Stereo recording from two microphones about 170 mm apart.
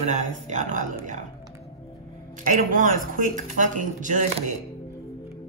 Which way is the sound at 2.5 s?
50° right (ahead or behind).